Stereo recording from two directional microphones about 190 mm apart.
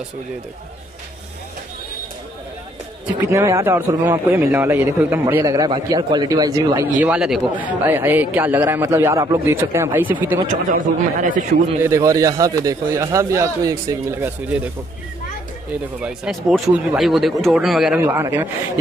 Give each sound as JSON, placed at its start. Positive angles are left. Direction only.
{"t": 3.3, "sound": "a man's voice", "side_deg": -15}
{"t": 7.0, "sound": "a man's voice", "side_deg": -5}
{"t": 10.7, "sound": "speech", "side_deg": -45}
{"t": 11.8, "sound": "a man's voice", "side_deg": -15}
{"t": 16.0, "sound": "speech", "side_deg": -5}
{"t": 17.9, "sound": "a man's voice", "side_deg": -10}